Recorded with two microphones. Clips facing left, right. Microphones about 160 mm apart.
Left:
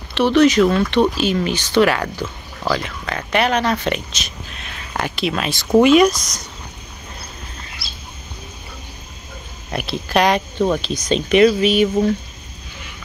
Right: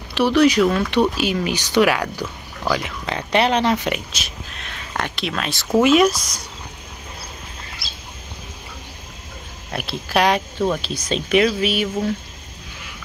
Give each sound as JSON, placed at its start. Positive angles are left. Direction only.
{"t": 0.1, "sound": "speech", "side_deg": -5}
{"t": 3.3, "sound": "speech", "side_deg": -25}
{"t": 9.7, "sound": "speech", "side_deg": 0}